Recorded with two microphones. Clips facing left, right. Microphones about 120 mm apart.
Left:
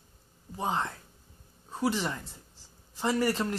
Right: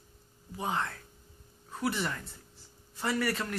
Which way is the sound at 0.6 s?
25° left (ahead or behind).